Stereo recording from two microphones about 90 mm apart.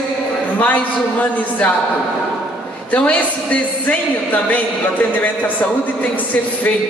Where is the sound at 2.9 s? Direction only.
15° left (ahead or behind).